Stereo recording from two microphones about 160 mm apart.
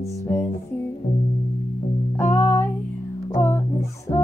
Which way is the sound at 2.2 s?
15° left (ahead or behind).